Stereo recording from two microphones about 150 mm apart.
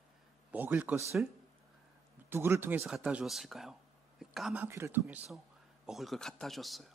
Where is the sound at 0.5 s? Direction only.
10° right (ahead or behind).